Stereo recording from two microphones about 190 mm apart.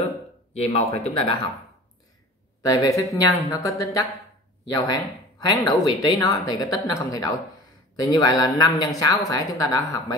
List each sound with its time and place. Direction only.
0.6 s speech: 30° left (ahead or behind)
2.6 s speech: 20° left (ahead or behind)